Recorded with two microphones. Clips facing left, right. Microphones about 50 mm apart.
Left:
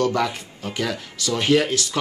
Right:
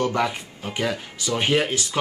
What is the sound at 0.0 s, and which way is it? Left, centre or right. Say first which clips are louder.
Speech: left 1 dB; right.